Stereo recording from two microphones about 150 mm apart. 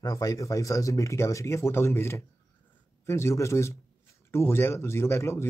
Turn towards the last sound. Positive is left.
turn(degrees=20)  # may be behind; listen again after turning